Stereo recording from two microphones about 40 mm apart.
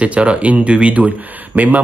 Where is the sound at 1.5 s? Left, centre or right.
Right.